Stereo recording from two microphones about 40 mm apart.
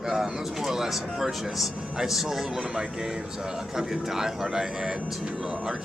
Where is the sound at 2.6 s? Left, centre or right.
Right.